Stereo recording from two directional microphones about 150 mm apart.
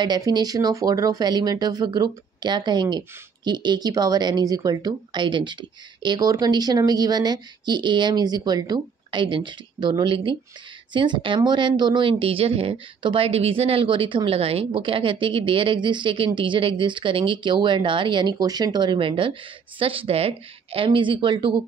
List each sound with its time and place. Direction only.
0.0 s speech: 30° right (ahead or behind)